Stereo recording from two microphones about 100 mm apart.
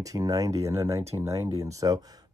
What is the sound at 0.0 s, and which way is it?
Speech, 35° right (ahead or behind).